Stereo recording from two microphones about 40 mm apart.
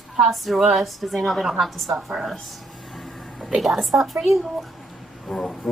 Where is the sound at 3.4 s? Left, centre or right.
Centre.